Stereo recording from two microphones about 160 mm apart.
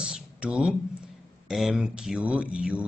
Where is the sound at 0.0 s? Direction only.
5° right (ahead or behind).